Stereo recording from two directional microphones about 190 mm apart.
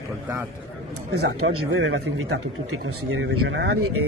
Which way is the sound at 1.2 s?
80° right.